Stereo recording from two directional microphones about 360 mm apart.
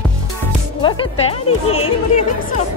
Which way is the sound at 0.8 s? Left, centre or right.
Centre.